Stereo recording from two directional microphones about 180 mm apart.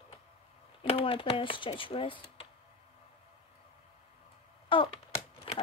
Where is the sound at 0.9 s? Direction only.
30° left (ahead or behind).